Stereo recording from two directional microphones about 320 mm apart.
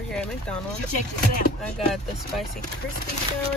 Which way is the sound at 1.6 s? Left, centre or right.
Centre.